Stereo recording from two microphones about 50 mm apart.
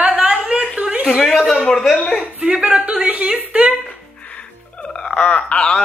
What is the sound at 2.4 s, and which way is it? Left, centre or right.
Speech, right.